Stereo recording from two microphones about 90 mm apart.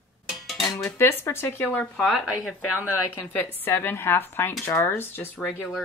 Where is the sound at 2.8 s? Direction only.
25° left (ahead or behind).